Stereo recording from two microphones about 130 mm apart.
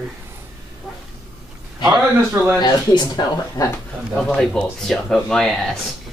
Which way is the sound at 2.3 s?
15° right (ahead or behind).